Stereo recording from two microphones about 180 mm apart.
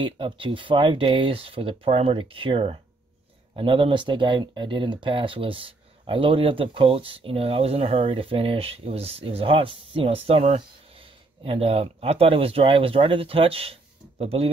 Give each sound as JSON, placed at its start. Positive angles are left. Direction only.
{"t": 0.0, "sound": "speech", "side_deg": -25}